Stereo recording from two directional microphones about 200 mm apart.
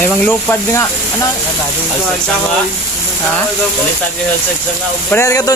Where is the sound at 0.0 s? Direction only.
10° left (ahead or behind).